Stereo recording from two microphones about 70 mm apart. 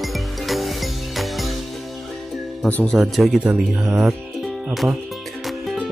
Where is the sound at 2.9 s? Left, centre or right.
Centre.